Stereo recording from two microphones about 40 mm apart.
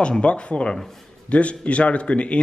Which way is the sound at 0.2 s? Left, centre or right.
Left.